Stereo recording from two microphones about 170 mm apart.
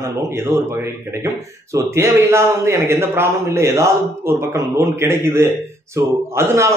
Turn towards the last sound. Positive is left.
turn(degrees=-15)  # may be behind; listen again after turning